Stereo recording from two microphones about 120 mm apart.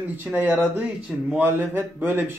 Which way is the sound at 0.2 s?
15° right (ahead or behind).